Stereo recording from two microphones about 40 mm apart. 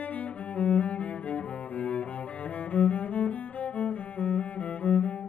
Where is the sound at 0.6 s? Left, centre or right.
Left.